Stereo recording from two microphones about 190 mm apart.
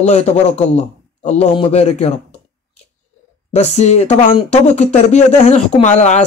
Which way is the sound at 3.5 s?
35° left (ahead or behind).